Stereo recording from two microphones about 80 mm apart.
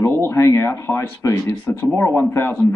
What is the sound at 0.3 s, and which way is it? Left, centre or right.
Speech, left.